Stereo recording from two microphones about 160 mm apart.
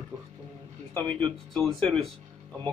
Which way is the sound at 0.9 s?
5° left (ahead or behind).